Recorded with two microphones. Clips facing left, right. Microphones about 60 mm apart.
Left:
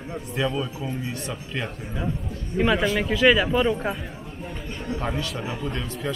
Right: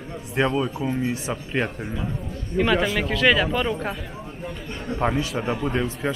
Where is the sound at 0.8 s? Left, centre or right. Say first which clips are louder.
Right 5 dB; right.